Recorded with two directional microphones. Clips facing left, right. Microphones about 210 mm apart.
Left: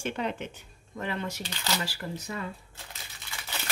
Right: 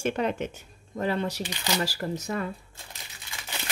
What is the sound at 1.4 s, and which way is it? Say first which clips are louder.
Speech: right 4 dB; 15° right (ahead or behind).